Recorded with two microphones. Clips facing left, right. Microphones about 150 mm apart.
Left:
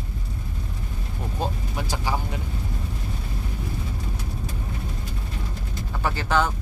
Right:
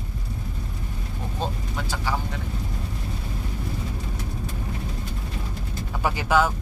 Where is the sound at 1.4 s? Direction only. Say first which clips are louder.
Left 1 dB; 15° left (ahead or behind).